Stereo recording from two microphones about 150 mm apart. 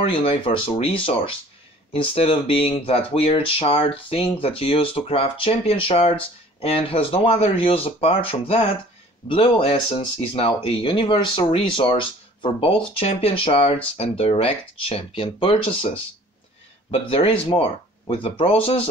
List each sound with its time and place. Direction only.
0.0 s speech: 35° left (ahead or behind)